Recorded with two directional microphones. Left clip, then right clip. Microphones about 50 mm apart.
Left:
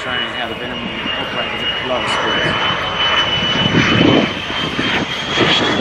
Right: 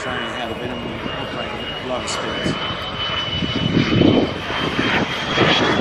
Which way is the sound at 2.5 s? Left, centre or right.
Centre.